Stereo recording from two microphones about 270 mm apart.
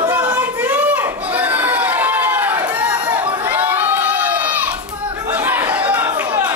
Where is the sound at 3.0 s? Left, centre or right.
Centre.